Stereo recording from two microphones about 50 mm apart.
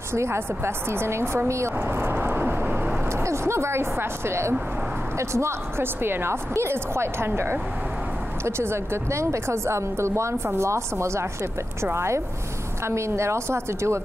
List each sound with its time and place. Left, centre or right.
0.1 s a woman's voice: right
1.9 s speech: right
3.3 s a woman's voice: right
6.0 s a woman's voice: right